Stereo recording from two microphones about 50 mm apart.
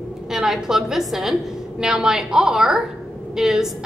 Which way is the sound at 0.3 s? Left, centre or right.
Centre.